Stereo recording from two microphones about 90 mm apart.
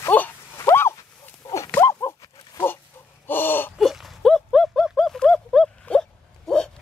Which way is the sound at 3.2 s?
25° left (ahead or behind).